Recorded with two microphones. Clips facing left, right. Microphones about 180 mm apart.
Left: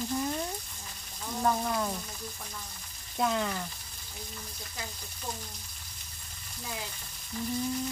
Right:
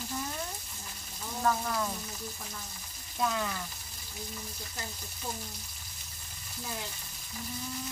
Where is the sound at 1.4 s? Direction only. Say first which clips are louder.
Left 1 dB; 15° left (ahead or behind).